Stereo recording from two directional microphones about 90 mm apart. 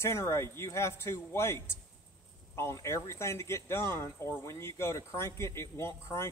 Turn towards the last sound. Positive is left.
turn(degrees=30)  # may be behind; listen again after turning